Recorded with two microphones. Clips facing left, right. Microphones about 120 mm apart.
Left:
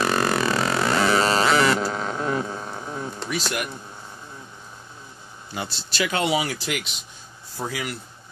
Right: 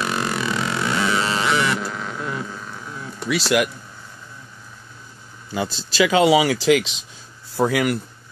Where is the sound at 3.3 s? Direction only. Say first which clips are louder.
Right 10 dB; 90° right.